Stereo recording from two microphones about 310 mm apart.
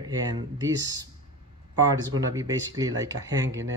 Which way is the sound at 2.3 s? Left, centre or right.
Centre.